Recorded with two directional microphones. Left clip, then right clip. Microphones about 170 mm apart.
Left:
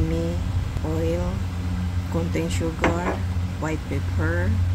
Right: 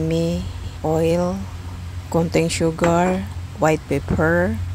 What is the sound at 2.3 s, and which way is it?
Speech, 45° right (ahead or behind).